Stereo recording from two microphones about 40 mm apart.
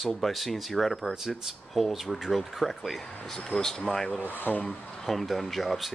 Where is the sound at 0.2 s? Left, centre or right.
Centre.